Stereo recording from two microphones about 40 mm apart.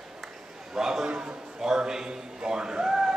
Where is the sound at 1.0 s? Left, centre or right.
Right.